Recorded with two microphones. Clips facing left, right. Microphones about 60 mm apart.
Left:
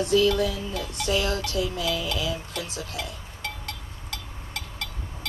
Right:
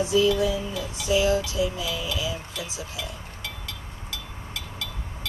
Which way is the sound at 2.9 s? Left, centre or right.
Left.